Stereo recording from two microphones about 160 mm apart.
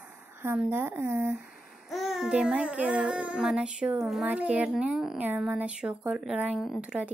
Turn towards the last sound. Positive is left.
turn(degrees=-5)  # may be behind; listen again after turning